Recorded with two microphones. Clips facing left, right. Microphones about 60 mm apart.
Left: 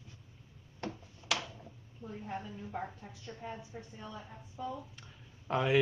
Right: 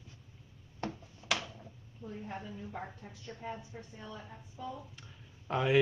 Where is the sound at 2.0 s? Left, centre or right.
Centre.